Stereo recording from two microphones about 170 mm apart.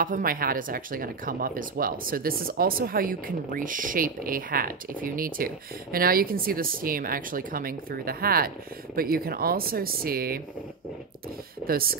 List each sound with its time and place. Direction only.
0.0 s speech: 55° right (ahead or behind)
11.6 s speech: 60° right (ahead or behind)